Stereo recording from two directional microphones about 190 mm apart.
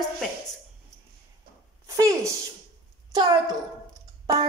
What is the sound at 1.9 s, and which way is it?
Speech, 15° right (ahead or behind).